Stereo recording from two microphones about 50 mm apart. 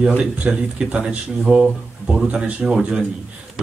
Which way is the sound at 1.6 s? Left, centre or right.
Centre.